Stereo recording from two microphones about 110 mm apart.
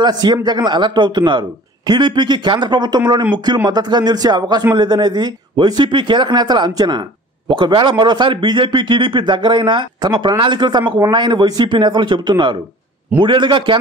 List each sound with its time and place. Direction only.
0.0 s a man's voice: 40° right (ahead or behind)